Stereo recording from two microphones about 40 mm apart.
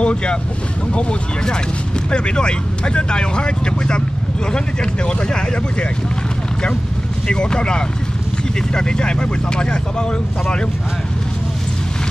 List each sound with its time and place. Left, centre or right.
0.0 s speech: left
2.0 s speech: left
7.2 s speech: left